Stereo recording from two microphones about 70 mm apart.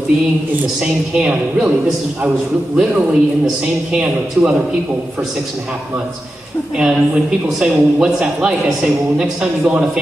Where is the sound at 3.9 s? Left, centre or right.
Centre.